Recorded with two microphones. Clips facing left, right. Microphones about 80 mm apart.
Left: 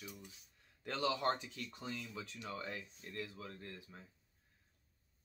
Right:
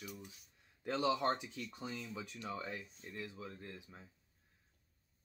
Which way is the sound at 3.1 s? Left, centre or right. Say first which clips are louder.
Even; centre.